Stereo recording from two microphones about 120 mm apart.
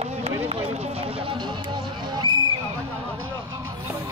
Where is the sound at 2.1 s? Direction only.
35° right (ahead or behind).